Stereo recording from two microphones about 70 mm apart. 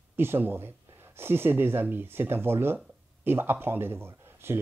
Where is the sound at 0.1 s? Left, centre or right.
Right.